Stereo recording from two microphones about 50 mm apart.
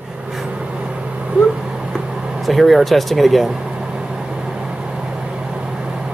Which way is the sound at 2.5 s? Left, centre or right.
Centre.